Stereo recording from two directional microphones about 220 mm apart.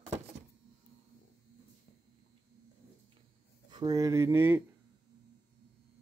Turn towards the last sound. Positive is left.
turn(degrees=-10)  # may be behind; listen again after turning